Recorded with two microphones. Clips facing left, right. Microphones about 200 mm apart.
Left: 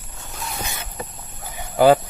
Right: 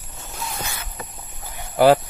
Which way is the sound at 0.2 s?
Centre (ahead or behind).